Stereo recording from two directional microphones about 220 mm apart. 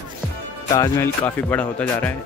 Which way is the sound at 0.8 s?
10° left (ahead or behind).